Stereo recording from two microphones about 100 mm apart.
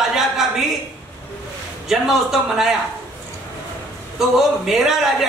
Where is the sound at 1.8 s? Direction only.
5° right (ahead or behind).